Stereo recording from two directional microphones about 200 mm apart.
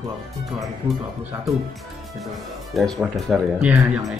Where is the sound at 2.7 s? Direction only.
Centre (ahead or behind).